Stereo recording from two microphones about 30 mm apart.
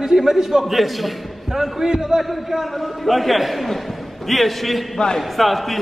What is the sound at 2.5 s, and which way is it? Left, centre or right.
A man's voice, centre.